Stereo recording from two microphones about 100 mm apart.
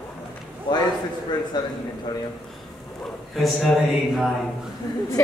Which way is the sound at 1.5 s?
45° left (ahead or behind).